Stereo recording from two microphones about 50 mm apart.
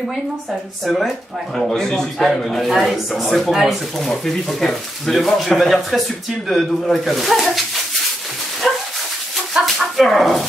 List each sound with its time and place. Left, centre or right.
0.8 s speech: centre
1.7 s a man's voice: centre
9.6 s dog: right
9.9 s speech: centre